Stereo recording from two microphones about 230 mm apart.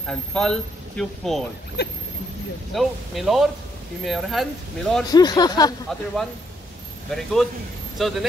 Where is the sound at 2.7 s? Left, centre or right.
Centre.